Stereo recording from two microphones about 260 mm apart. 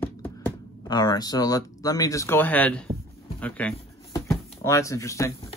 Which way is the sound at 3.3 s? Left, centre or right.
Centre.